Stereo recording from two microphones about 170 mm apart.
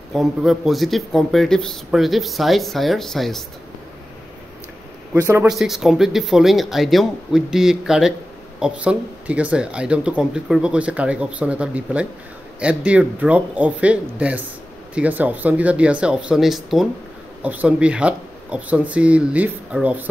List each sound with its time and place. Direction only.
0.1 s speech: centre (ahead or behind)
5.1 s speech: 15° right (ahead or behind)
5.5 s speech: centre (ahead or behind)